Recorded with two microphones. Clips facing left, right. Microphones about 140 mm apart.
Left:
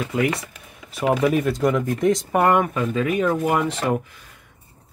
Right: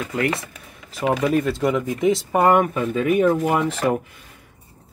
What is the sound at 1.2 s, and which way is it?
Speech, centre (ahead or behind).